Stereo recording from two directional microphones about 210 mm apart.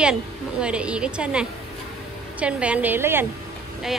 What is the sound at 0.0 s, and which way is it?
A woman's voice, 5° right (ahead or behind).